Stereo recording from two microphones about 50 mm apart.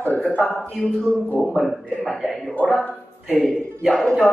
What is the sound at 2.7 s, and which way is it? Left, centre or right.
Speech, centre.